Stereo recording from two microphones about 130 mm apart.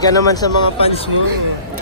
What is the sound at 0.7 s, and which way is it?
Speech, 50° left (ahead or behind).